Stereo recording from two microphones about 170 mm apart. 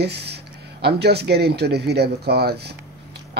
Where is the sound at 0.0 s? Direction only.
75° right (ahead or behind).